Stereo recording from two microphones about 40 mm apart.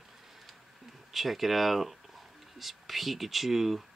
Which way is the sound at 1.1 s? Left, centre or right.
Centre.